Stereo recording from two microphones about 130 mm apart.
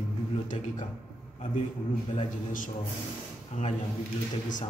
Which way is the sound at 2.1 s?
90° left.